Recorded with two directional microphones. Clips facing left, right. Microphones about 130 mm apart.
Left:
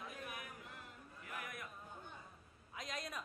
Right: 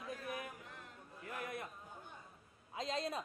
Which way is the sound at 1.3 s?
30° right (ahead or behind).